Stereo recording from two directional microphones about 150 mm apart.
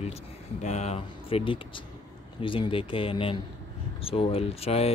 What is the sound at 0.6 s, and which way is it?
Speech, 50° left (ahead or behind).